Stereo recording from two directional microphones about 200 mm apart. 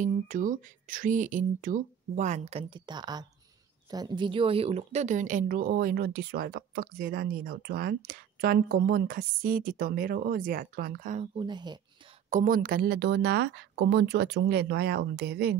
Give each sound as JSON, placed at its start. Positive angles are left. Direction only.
{"t": 0.0, "sound": "speech", "side_deg": -40}
{"t": 11.3, "sound": "speech", "side_deg": -20}
{"t": 12.3, "sound": "speech", "side_deg": -40}